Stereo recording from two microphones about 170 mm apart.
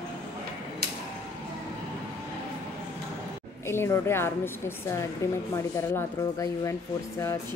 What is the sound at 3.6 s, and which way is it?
A woman's voice, 15° left (ahead or behind).